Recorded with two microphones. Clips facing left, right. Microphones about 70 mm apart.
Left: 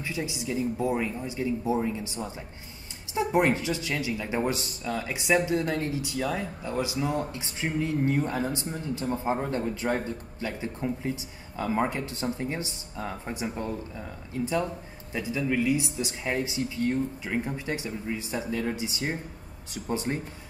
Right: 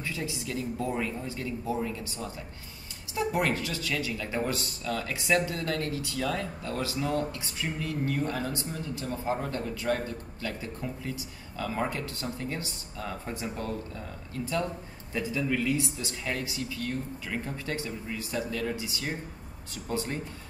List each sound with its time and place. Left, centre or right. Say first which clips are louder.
0.0 s speech: left 2 dB; centre